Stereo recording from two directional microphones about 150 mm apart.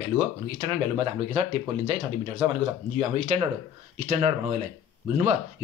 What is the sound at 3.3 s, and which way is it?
Speech, 45° right (ahead or behind).